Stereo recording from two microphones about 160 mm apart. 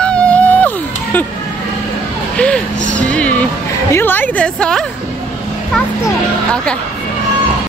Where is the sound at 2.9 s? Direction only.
10° left (ahead or behind).